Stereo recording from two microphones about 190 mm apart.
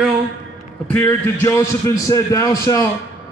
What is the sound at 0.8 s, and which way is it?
A man's voice, 10° left (ahead or behind).